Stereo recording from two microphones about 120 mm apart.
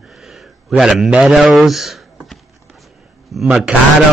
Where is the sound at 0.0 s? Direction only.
Centre (ahead or behind).